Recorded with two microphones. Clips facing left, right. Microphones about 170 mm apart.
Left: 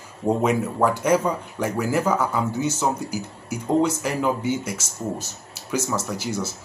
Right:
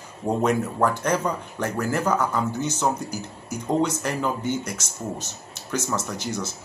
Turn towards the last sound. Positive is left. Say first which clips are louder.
# left 2 dB
turn(degrees=5)  # may be behind; listen again after turning